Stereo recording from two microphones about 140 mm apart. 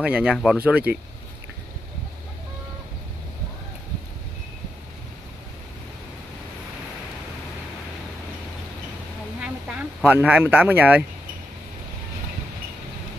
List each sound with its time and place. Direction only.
0.0 s speech: 10° right (ahead or behind)
9.4 s speech: 10° right (ahead or behind)